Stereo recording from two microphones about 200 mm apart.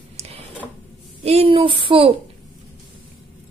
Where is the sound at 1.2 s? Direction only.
30° right (ahead or behind).